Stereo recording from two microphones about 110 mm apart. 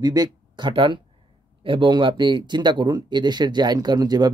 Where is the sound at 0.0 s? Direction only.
40° right (ahead or behind).